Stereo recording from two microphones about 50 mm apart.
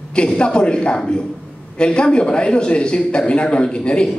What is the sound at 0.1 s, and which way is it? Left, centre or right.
A man's voice, centre.